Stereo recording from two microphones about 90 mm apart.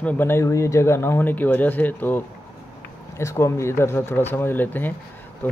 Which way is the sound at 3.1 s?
30° left (ahead or behind).